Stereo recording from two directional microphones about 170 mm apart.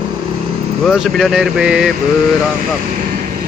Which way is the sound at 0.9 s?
Centre (ahead or behind).